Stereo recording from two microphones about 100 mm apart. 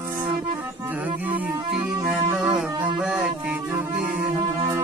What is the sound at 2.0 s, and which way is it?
Music, 10° right (ahead or behind).